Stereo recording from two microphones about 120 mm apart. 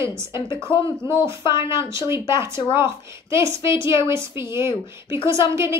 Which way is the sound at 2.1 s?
20° right (ahead or behind).